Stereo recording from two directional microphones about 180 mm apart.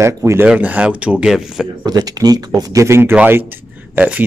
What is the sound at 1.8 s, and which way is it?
Speech, 20° right (ahead or behind).